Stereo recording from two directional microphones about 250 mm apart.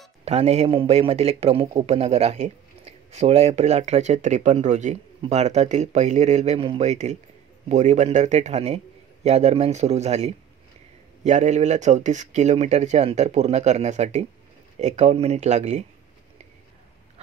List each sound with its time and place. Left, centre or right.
0.2 s a man's voice: right